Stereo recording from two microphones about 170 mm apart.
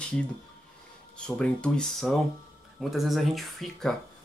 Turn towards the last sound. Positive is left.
turn(degrees=0)  # may be behind; listen again after turning